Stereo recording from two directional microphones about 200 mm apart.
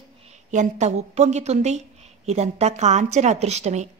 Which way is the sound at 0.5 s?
35° right (ahead or behind).